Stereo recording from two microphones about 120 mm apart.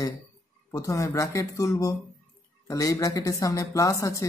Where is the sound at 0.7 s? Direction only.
25° left (ahead or behind).